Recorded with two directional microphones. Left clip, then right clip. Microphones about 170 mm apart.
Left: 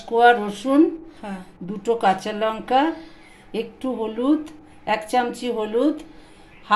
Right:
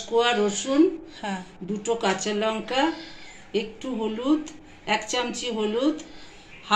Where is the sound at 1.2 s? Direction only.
Centre (ahead or behind).